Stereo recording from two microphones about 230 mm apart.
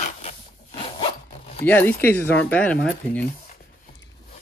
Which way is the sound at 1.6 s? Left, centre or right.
Centre.